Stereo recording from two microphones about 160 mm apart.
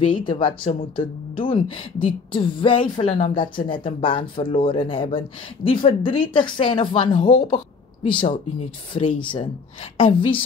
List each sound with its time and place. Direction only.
0.0 s speech: 30° left (ahead or behind)